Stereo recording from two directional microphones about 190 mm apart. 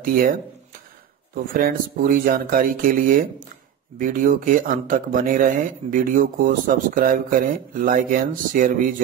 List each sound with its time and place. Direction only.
0.0 s speech: 50° right (ahead or behind)